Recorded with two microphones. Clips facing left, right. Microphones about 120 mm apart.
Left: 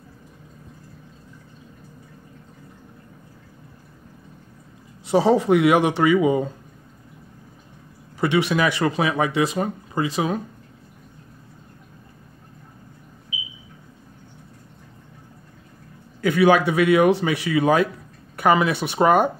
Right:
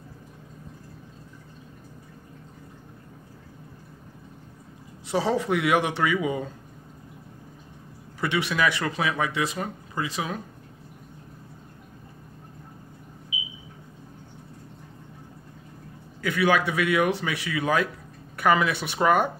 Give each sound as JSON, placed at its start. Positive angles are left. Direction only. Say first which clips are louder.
{"t": 5.0, "sound": "speech", "louder": "left 7 dB", "side_deg": 20}
{"t": 8.2, "sound": "speech", "louder": "left 5 dB", "side_deg": 25}
{"t": 16.2, "sound": "speech", "louder": "left 6 dB", "side_deg": 30}